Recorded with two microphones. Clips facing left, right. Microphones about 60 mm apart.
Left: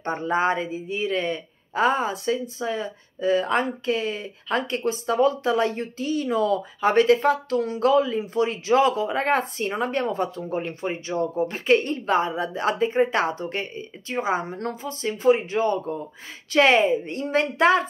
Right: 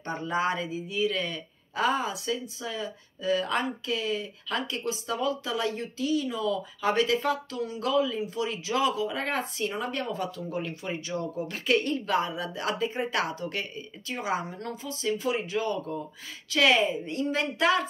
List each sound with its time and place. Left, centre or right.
0.0 s speech: left
7.8 s a woman's voice: left